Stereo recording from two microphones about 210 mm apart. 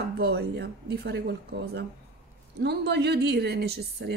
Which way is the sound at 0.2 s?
50° right (ahead or behind).